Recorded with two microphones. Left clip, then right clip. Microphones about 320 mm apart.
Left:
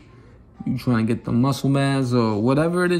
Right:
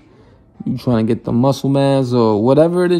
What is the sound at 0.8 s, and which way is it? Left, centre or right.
Speech, right.